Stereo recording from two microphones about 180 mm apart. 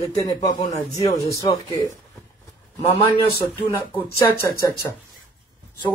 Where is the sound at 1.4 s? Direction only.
20° left (ahead or behind).